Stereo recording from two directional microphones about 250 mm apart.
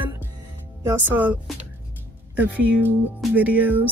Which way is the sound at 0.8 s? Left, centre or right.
Centre.